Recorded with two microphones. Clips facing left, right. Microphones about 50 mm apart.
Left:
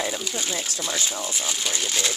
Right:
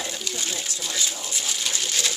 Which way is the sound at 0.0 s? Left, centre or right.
Centre.